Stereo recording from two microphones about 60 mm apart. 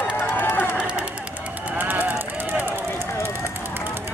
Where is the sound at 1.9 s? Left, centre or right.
Right.